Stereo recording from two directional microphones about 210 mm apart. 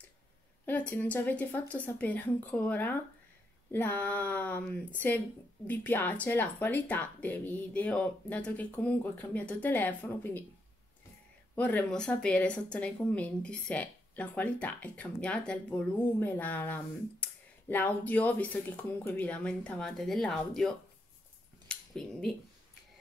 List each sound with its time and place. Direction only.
0.7 s speech: 5° left (ahead or behind)
11.5 s speech: 5° left (ahead or behind)
21.6 s a sound: centre (ahead or behind)